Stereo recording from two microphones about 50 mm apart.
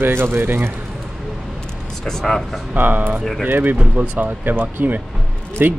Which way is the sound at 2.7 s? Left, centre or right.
Right.